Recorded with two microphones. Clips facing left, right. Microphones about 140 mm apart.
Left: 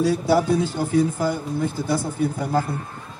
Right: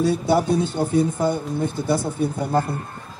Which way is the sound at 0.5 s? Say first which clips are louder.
Right 1 dB; 25° right (ahead or behind).